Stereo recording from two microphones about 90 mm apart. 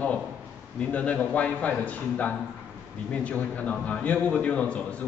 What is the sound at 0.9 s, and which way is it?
A man's voice, 15° left (ahead or behind).